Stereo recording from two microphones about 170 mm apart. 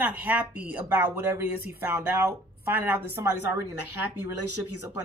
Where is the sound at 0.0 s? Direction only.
10° right (ahead or behind).